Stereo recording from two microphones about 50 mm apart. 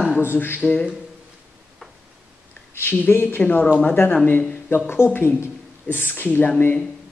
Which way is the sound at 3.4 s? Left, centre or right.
Left.